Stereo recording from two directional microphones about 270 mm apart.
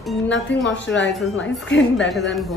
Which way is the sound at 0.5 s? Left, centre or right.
Left.